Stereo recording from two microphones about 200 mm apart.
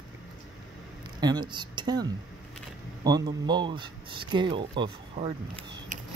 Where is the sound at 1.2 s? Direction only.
20° right (ahead or behind).